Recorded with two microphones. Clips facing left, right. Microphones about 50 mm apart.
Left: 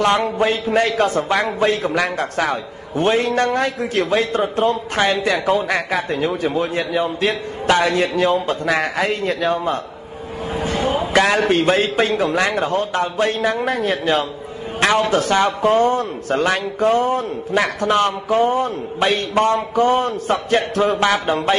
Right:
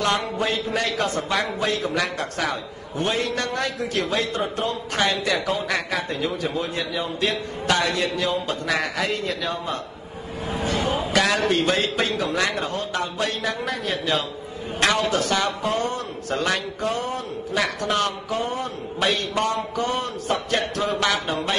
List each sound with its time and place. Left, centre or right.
0.0 s a man's voice: left
10.6 s a sound: left
11.1 s a man's voice: left